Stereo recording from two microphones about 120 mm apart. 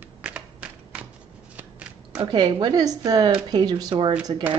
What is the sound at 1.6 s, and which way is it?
Shuffling cards, 15° right (ahead or behind).